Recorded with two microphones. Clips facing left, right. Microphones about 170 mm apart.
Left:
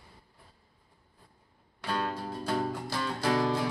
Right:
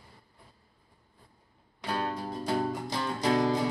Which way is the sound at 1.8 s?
15° right (ahead or behind).